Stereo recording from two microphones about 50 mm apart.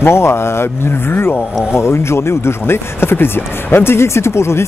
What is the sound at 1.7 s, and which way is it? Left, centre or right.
Speech, left.